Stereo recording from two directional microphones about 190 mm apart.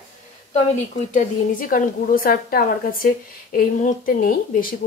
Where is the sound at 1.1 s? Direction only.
45° left (ahead or behind).